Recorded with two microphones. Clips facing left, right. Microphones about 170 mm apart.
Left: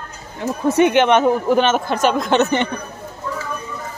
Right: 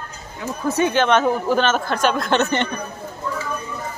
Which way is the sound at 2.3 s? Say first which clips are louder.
Left 3 dB; 15° left (ahead or behind).